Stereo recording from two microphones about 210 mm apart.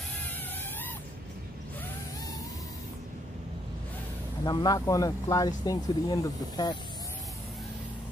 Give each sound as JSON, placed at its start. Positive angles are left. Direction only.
{"t": 4.5, "sound": "speech", "side_deg": 20}